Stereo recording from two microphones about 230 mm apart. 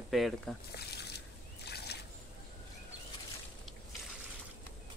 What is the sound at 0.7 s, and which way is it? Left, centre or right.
Trickle, left.